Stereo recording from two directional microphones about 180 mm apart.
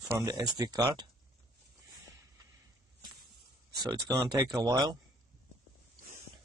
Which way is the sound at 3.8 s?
20° right (ahead or behind).